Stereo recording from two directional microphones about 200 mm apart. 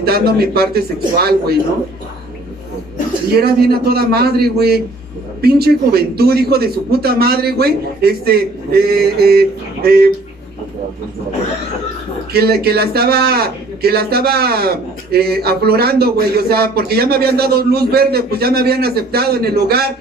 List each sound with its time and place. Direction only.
0.0 s speech: 50° right (ahead or behind)
3.3 s speech: 50° right (ahead or behind)
12.3 s speech: 50° right (ahead or behind)